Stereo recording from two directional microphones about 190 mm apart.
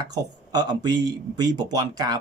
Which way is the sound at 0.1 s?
20° right (ahead or behind).